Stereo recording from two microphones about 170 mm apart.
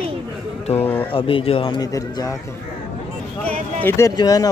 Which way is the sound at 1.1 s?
30° left (ahead or behind).